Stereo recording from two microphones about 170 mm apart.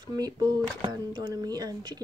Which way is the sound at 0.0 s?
25° right (ahead or behind).